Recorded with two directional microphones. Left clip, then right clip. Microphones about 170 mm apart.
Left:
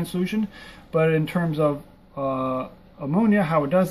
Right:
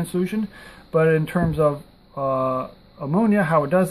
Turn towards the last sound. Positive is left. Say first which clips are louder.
# right 2 dB
turn(degrees=-30)  # may be behind; listen again after turning